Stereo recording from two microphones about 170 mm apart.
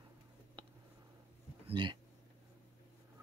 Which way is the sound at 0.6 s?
30° right (ahead or behind).